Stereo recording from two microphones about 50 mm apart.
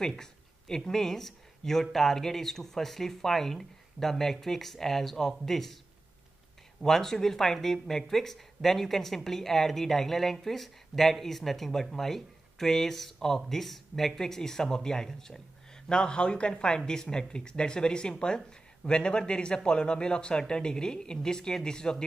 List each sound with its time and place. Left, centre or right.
0.0 s speech: centre
6.8 s speech: centre